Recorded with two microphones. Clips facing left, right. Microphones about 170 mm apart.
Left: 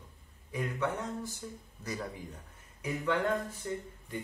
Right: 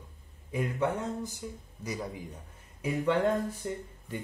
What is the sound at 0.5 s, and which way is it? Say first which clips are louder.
Speech: right 4 dB; 25° right (ahead or behind).